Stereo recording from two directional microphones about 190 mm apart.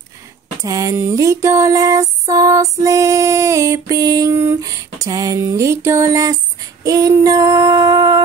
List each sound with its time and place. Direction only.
0.6 s music: 15° right (ahead or behind)
2.8 s a sound: 15° right (ahead or behind)
6.8 s female singing: 20° right (ahead or behind)